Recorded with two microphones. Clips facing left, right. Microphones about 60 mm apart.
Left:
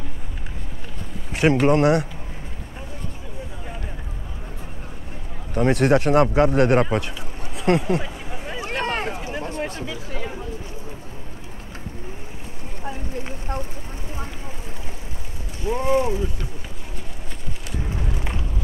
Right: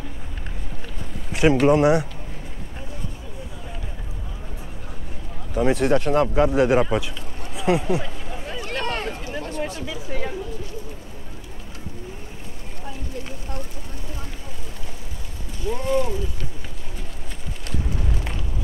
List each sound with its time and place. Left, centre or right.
1.3 s speech: centre
5.5 s a man's voice: centre
5.9 s speech: left
6.3 s speech: centre
8.0 s a sound: centre
8.5 s a sound: left
12.8 s vehicle: left
15.6 s speech: left
18.0 s a sound: centre